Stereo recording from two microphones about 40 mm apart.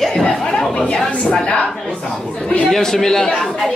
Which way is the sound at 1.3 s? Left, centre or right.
Left.